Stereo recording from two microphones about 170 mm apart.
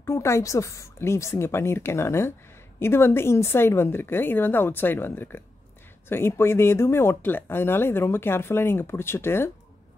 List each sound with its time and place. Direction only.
0.0 s speech: 15° left (ahead or behind)